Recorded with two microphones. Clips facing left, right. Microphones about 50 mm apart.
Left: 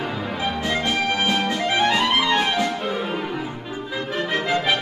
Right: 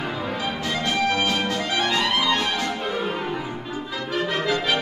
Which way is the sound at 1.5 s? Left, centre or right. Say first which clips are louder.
Left 3 dB; centre.